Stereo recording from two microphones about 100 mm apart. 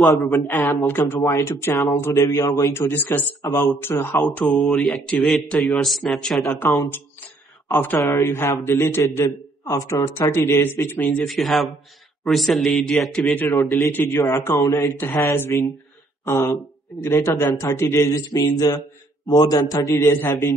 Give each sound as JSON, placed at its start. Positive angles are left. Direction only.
{"t": 0.0, "sound": "a man's voice", "side_deg": 0}
{"t": 0.3, "sound": "a man's voice", "side_deg": 30}
{"t": 2.9, "sound": "a man's voice", "side_deg": 20}
{"t": 4.4, "sound": "speech", "side_deg": 15}
{"t": 4.6, "sound": "a man's voice", "side_deg": 0}
{"t": 8.1, "sound": "a man's voice", "side_deg": 25}
{"t": 11.2, "sound": "a man's voice", "side_deg": 0}
{"t": 13.3, "sound": "a man's voice", "side_deg": 20}
{"t": 20.0, "sound": "a man's voice", "side_deg": 25}